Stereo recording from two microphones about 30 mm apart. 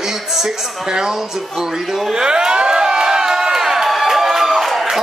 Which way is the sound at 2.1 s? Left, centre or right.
Right.